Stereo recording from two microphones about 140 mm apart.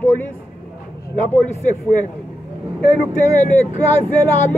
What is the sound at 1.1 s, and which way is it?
Speech, 10° left (ahead or behind).